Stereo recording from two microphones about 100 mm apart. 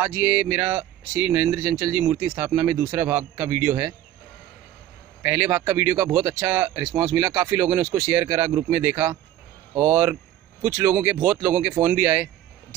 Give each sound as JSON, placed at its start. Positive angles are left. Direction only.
{"t": 0.0, "sound": "speech", "side_deg": -15}
{"t": 5.2, "sound": "speech", "side_deg": -20}